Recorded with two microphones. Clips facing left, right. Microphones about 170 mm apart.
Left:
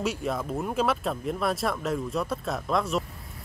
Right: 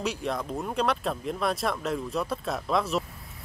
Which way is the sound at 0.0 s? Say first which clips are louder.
Left 1 dB; centre (ahead or behind).